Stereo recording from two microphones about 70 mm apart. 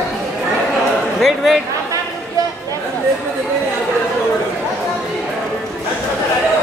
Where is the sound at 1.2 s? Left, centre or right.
Centre.